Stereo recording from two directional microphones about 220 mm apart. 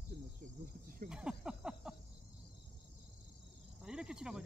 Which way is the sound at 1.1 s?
5° right (ahead or behind).